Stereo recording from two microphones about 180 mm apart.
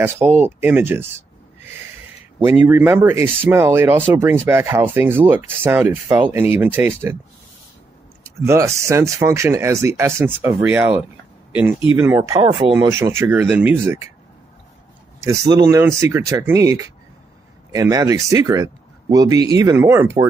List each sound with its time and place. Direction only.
0.0 s speech: 10° right (ahead or behind)
2.4 s speech: 10° right (ahead or behind)
8.4 s speech: 15° right (ahead or behind)
15.2 s speech: 20° right (ahead or behind)